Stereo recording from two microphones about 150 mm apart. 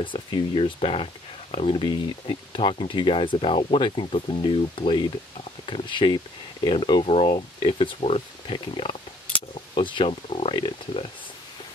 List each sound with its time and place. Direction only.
0.0 s speech: 35° left (ahead or behind)